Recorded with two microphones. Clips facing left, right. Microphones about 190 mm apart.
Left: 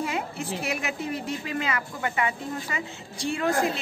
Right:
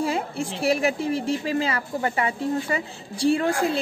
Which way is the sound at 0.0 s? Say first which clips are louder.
Right 5 dB; 30° right (ahead or behind).